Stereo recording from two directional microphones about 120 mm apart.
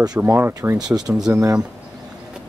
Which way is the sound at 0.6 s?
30° right (ahead or behind).